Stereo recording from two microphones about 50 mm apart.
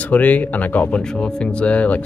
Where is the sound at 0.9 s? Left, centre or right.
Centre.